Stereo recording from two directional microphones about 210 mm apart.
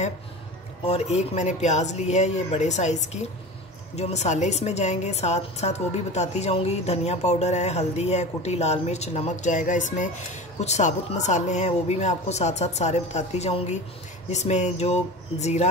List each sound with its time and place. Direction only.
0.8 s a woman's voice: 30° left (ahead or behind)